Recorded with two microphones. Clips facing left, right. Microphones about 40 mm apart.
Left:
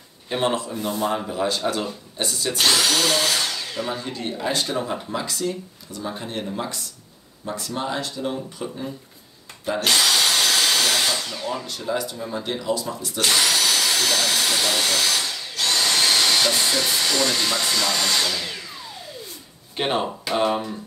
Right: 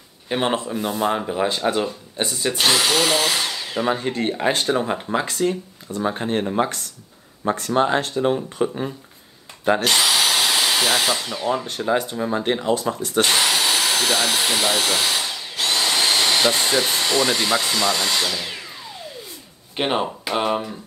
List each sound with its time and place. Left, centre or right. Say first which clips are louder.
0.3 s speech: right 1 dB; right
3.9 s speech: right 6 dB; right
9.8 s speech: left 4 dB; centre; by 13.2 s right
13.2 s vacuum cleaner: right 1 dB; right
16.6 s dental drill: right 2 dB; right
17.2 s speech: right 3 dB; centre
19.7 s speech: right 1 dB; centre